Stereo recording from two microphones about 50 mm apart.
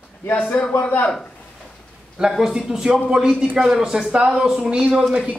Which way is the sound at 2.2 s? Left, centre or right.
Centre.